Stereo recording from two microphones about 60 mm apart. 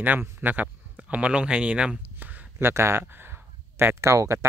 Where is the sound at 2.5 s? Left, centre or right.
Right.